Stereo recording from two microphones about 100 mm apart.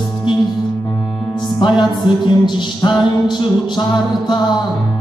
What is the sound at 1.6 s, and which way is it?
Music, 50° left (ahead or behind).